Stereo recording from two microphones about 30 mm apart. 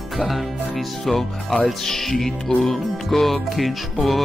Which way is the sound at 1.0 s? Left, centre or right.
Centre.